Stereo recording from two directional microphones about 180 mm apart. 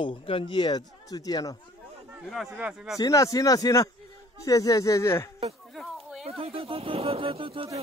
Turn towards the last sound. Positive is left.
turn(degrees=-30)  # may be behind; listen again after turning